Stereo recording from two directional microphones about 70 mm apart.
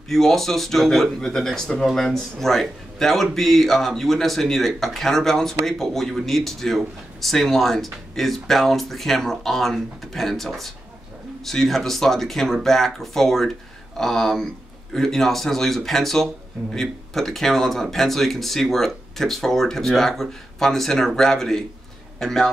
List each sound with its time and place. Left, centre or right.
0.1 s speech: centre